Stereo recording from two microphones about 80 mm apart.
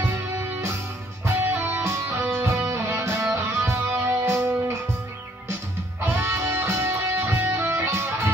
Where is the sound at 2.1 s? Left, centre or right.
Right.